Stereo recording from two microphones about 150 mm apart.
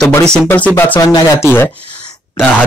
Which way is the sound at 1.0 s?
25° left (ahead or behind).